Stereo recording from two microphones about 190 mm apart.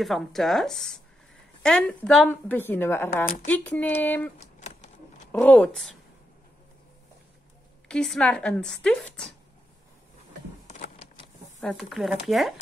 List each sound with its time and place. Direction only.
0.0 s a woman's voice: centre (ahead or behind)
4.4 s a sound: 35° left (ahead or behind)
5.3 s a woman's voice: 5° left (ahead or behind)
7.9 s a woman's voice: 5° left (ahead or behind)
10.7 s a sound: 40° left (ahead or behind)
11.9 s a woman's voice: centre (ahead or behind)